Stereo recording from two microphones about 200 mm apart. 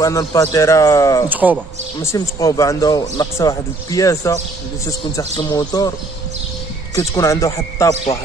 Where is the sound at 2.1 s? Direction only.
15° left (ahead or behind).